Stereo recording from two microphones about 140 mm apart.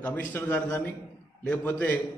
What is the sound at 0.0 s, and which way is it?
A man's voice, 10° left (ahead or behind).